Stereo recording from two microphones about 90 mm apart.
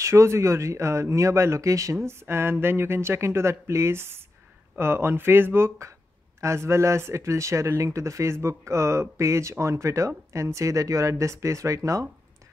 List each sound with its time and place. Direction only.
0.0 s speech: 35° right (ahead or behind)